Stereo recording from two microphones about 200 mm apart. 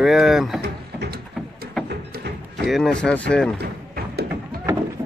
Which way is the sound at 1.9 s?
55° right (ahead or behind).